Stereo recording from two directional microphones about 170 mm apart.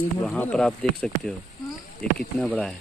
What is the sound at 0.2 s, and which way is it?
Speech, 5° left (ahead or behind).